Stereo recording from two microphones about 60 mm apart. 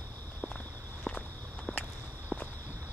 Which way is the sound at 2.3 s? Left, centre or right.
Right.